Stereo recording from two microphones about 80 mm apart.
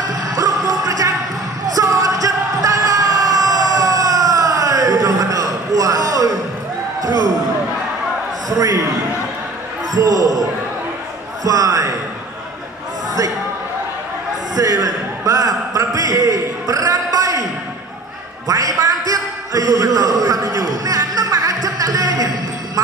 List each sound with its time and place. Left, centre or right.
0.0 s music: right
0.8 s basketball bounce: right
1.8 s music: right
7.0 s a sound: right
8.5 s a man's voice: right
9.9 s speech: right
11.4 s speech: right
14.5 s a sound: right
18.5 s a sound: right